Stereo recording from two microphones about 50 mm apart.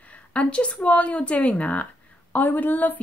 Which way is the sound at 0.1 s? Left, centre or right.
Left.